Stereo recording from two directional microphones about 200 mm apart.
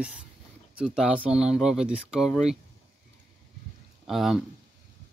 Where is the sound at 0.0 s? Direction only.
5° right (ahead or behind).